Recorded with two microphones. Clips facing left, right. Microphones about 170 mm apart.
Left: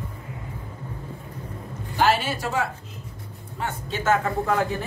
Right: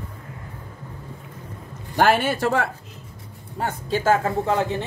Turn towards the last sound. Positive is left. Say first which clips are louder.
# right 2 dB
turn(degrees=-25)  # may be behind; listen again after turning